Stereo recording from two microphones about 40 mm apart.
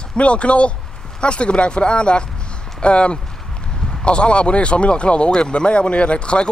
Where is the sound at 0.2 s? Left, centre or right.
Left.